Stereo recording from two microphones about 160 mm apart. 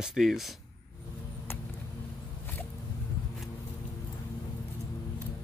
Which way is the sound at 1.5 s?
15° left (ahead or behind).